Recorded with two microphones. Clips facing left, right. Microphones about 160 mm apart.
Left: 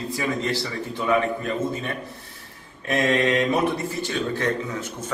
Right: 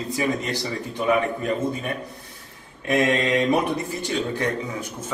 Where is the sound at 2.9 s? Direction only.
20° right (ahead or behind).